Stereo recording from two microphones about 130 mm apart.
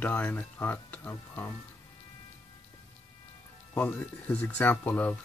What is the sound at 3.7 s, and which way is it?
Speech, 15° left (ahead or behind).